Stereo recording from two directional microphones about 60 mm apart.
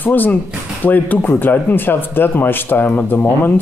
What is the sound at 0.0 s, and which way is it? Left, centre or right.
Speech, left.